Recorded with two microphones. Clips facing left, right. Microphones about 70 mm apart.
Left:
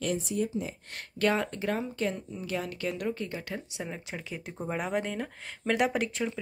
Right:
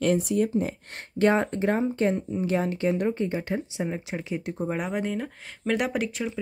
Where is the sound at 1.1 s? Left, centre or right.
Right.